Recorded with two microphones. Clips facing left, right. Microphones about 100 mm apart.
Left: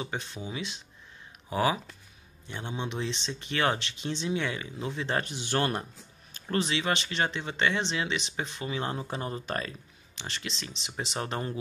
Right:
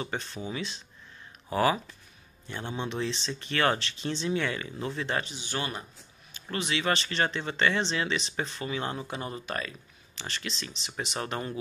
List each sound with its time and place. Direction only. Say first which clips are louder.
0.0 s speech: right 1 dB; 10° left (ahead or behind)
5.2 s a man's voice: left 5 dB; 60° left (ahead or behind)
6.3 s a sound: left 5 dB; 40° left (ahead or behind)
6.7 s speech: right 1 dB; 15° left (ahead or behind); by 9.8 s 35° left (ahead or behind)
10.1 s speech: right 1 dB; 25° left (ahead or behind)